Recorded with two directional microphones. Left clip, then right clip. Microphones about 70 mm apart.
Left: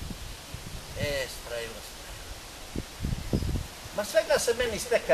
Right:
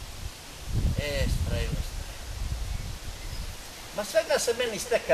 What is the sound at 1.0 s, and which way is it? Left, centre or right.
Speech, centre.